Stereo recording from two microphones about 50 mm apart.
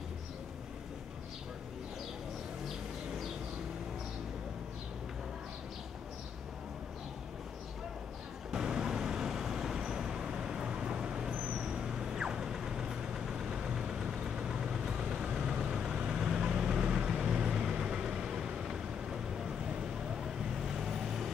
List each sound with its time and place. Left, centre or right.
8.5 s vehicle: centre